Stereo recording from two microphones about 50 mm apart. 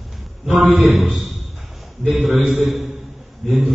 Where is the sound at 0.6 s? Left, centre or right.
Centre.